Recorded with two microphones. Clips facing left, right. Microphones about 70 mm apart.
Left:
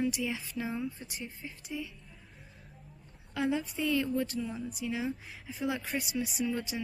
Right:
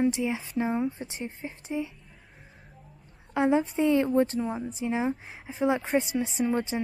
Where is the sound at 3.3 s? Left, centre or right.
Right.